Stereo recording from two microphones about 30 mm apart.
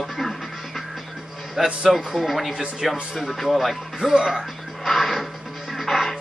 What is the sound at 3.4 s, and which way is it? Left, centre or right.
Speech, centre.